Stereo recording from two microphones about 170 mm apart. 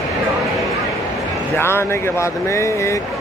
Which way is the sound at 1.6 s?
15° left (ahead or behind).